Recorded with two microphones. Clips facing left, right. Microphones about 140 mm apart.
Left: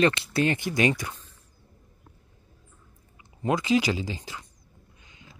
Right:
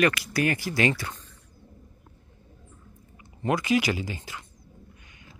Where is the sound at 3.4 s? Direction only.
20° left (ahead or behind).